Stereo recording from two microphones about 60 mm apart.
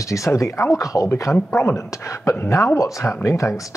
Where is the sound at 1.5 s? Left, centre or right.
Left.